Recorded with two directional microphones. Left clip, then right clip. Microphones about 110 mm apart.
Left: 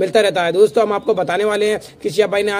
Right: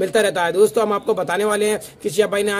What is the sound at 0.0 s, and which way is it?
Speech, 30° right (ahead or behind).